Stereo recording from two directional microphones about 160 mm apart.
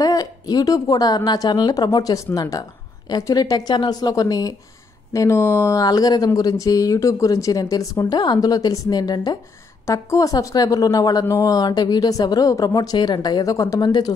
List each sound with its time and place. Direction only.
0.0 s speech: 25° left (ahead or behind)